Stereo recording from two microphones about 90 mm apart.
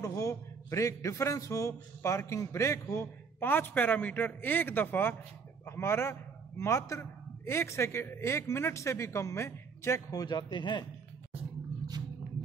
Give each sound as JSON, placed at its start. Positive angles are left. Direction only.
{"t": 0.0, "sound": "a man's voice", "side_deg": 40}
{"t": 10.1, "sound": "speech", "side_deg": 50}